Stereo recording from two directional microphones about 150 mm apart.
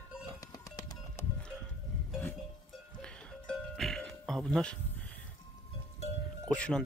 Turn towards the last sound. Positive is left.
turn(degrees=5)  # may be behind; listen again after turning